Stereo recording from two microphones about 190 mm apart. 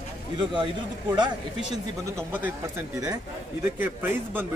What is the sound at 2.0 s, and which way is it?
Speech, 10° right (ahead or behind).